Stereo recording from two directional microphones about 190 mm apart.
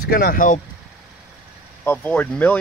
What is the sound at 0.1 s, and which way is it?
Speech, 50° left (ahead or behind).